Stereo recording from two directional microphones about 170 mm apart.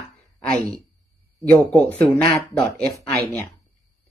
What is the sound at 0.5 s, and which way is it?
Speech, 20° right (ahead or behind).